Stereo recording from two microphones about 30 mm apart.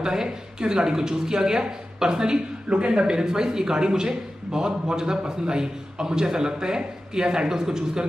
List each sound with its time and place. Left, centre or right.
0.0 s a man's voice: right